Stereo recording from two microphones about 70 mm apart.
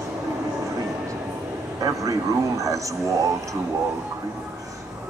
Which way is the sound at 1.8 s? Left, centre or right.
Right.